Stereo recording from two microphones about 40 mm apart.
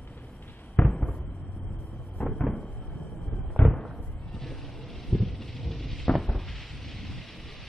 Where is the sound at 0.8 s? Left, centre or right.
Left.